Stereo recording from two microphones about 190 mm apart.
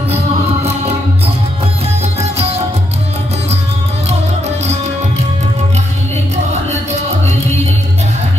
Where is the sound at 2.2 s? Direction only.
35° right (ahead or behind).